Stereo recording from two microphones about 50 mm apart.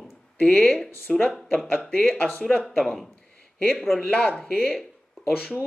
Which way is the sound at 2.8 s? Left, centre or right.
Centre.